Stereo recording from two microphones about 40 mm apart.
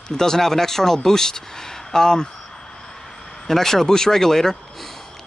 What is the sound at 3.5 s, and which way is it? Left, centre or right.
Speech, centre.